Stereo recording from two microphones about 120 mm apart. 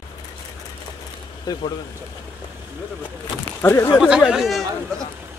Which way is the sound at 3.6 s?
20° left (ahead or behind).